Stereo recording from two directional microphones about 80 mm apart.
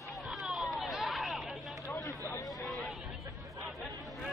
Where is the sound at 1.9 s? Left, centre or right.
Left.